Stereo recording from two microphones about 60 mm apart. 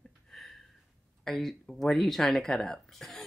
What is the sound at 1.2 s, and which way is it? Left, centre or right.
Speech, centre.